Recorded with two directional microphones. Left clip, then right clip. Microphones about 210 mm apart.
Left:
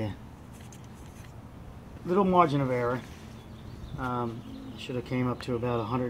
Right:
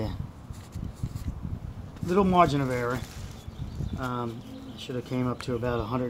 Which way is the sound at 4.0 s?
15° right (ahead or behind).